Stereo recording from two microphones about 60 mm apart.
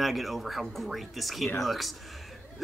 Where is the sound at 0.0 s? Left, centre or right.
Centre.